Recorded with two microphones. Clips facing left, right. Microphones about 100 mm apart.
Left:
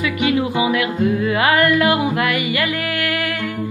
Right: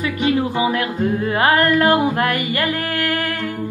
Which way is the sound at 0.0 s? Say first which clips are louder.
Even; 40° right (ahead or behind).